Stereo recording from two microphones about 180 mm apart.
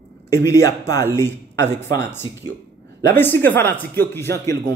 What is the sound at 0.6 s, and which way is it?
Speech, 15° left (ahead or behind).